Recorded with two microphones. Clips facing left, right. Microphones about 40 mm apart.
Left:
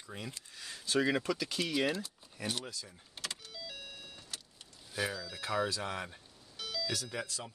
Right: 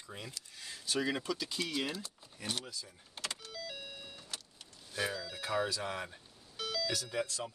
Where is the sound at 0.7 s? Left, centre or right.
Left.